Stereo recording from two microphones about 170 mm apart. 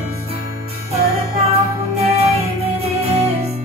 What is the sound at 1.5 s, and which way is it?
Music, 35° right (ahead or behind).